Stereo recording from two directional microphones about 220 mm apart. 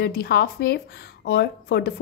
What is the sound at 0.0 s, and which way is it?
A woman's voice, 45° left (ahead or behind).